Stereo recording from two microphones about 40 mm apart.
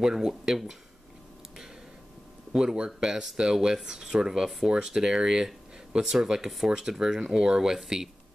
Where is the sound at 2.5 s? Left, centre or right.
Right.